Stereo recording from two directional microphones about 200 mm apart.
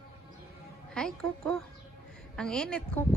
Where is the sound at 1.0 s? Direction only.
5° left (ahead or behind).